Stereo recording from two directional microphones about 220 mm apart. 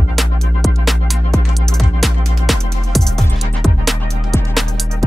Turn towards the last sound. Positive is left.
turn(degrees=0)  # may be behind; listen again after turning